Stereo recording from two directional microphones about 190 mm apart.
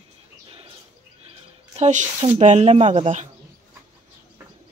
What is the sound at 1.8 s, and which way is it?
Speech, 35° right (ahead or behind).